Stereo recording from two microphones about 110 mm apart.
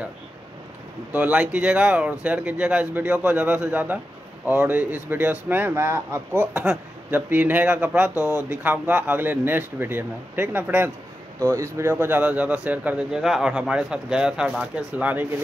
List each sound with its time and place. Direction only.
1.1 s speech: 15° right (ahead or behind)
8.1 s speech: 25° left (ahead or behind)
8.5 s speech: 15° right (ahead or behind)